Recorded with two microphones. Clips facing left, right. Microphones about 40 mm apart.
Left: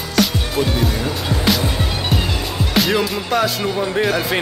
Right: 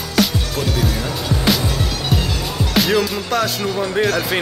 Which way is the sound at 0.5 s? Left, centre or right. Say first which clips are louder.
Left 3 dB; left.